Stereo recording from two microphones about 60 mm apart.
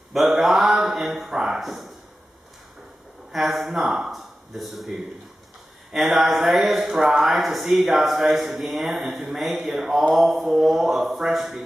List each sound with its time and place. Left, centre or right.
0.1 s speech: centre
3.3 s speech: centre